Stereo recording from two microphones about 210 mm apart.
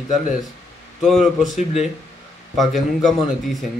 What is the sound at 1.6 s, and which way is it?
Speech, 30° left (ahead or behind).